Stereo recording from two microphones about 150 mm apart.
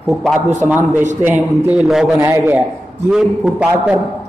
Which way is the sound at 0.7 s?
10° right (ahead or behind).